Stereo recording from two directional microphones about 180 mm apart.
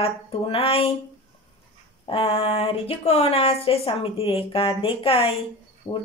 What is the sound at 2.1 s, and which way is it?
A woman's voice, 30° left (ahead or behind).